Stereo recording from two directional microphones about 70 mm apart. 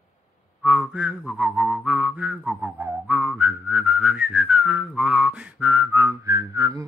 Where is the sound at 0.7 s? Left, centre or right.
Centre; by 6.1 s right.